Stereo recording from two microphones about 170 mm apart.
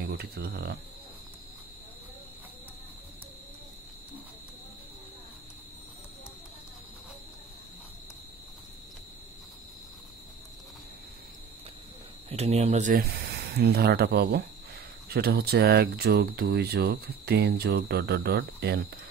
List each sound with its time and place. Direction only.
0.1 s speech: 70° right (ahead or behind)
12.3 s speech: 40° right (ahead or behind)
13.1 s speech: 70° right (ahead or behind)